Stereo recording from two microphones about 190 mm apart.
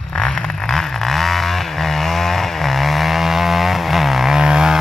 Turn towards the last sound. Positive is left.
turn(degrees=-5)  # may be behind; listen again after turning